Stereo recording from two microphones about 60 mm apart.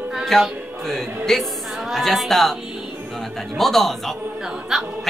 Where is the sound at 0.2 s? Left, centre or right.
Centre.